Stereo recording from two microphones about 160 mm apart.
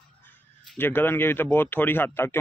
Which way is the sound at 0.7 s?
15° left (ahead or behind).